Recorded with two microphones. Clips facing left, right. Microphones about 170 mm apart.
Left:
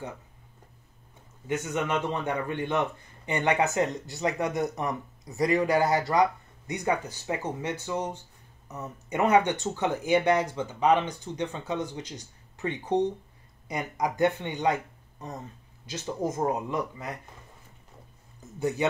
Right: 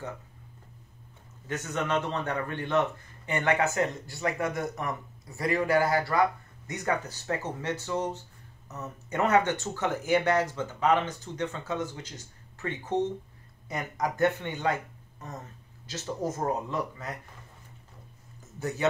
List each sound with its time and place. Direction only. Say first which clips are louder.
1.5 s a man's voice: left 1 dB; 15° left (ahead or behind)
18.6 s a man's voice: left 4 dB; 15° left (ahead or behind)